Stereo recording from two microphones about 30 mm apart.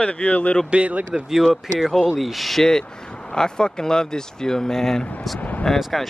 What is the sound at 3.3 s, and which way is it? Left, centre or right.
Speech, left.